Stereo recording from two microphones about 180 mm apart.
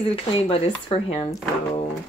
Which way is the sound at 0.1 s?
30° left (ahead or behind).